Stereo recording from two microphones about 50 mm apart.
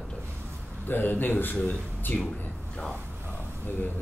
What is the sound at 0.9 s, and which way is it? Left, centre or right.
Speech, left.